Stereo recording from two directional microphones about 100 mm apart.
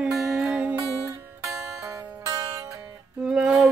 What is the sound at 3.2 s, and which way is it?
Music, 5° right (ahead or behind).